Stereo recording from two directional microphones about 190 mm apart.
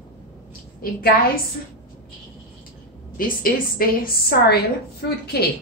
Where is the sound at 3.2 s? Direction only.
50° left (ahead or behind).